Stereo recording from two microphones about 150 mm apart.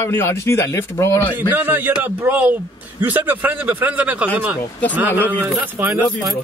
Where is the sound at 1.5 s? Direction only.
15° right (ahead or behind).